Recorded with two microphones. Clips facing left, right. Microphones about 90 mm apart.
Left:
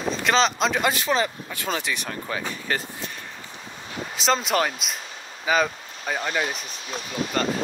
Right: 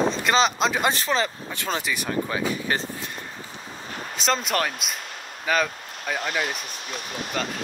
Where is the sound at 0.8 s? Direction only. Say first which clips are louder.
Even; 35° right (ahead or behind).